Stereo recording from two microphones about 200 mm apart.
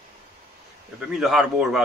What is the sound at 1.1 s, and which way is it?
Speech, centre (ahead or behind).